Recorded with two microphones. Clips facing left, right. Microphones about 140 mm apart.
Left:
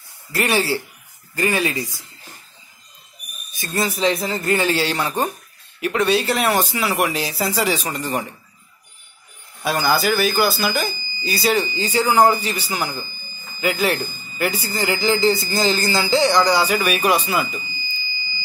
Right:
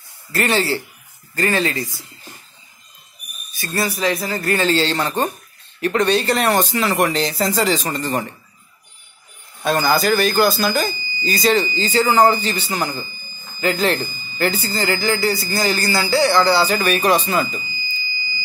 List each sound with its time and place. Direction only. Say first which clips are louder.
0.3 s speech: right 1 dB; 15° left (ahead or behind)
3.5 s speech: even; 20° left (ahead or behind)
9.6 s speech: right 2 dB; 5° left (ahead or behind)